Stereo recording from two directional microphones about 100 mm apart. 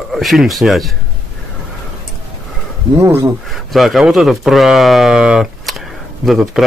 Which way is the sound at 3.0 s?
30° right (ahead or behind).